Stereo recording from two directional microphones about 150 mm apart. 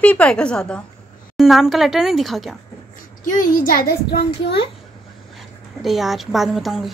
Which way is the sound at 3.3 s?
65° left (ahead or behind).